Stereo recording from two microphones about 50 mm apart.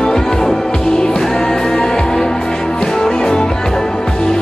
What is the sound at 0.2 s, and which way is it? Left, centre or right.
Music, centre.